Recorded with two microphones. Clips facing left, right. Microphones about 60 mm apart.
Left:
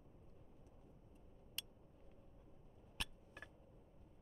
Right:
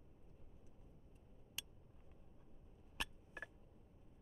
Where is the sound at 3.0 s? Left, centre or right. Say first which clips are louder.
Right 3 dB; centre.